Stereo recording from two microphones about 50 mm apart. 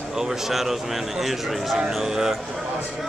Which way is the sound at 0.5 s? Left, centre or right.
Centre.